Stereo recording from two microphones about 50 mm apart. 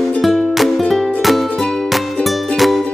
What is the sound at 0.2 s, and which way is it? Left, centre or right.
Music, centre.